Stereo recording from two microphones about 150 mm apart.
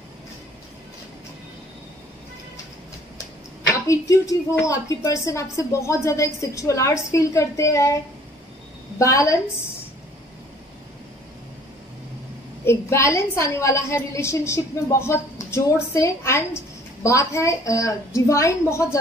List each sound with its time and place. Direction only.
3.8 s a woman's voice: 20° left (ahead or behind)
12.6 s a woman's voice: 15° left (ahead or behind)